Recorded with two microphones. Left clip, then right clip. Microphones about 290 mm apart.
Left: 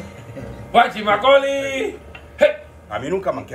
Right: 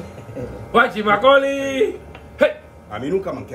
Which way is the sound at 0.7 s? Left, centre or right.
Centre.